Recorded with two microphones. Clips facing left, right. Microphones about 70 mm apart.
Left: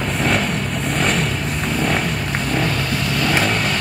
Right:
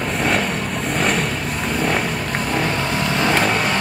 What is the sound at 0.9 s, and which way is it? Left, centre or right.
Vehicle, centre.